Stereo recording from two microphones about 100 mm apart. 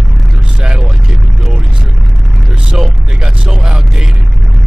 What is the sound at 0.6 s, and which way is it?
Vehicle, 5° right (ahead or behind).